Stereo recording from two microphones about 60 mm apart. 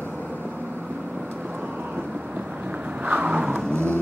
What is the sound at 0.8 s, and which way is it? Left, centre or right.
Vehicle, right.